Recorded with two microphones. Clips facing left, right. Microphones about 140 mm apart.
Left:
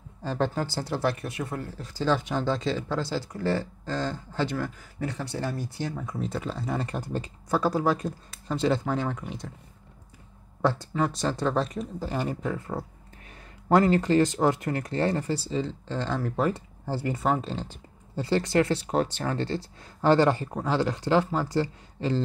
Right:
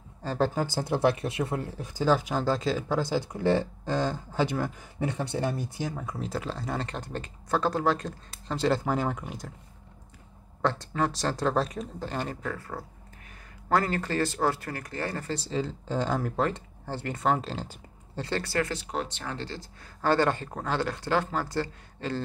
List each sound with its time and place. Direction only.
0.2 s speech: 5° right (ahead or behind)
0.7 s speech: 15° right (ahead or behind)
10.6 s speech: 10° left (ahead or behind)
15.3 s speech: centre (ahead or behind)
15.9 s speech: 10° right (ahead or behind)
16.2 s speech: 5° left (ahead or behind)
18.2 s speech: 15° left (ahead or behind)
18.7 s speech: 35° left (ahead or behind)
20.0 s speech: 15° left (ahead or behind)